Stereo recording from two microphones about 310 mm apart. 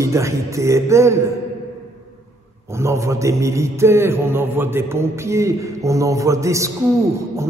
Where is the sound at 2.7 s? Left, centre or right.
Centre.